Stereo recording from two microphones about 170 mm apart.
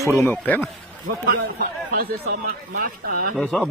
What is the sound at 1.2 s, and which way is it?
A man's voice, 60° right (ahead or behind).